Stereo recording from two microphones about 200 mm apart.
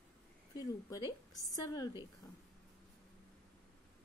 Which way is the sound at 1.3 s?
15° left (ahead or behind).